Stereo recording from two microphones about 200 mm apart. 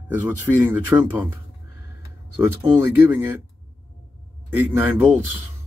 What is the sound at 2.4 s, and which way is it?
Speech, 10° right (ahead or behind).